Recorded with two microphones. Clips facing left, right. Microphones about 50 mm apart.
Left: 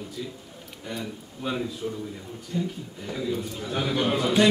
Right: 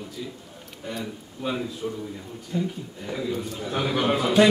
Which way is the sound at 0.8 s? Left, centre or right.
Centre.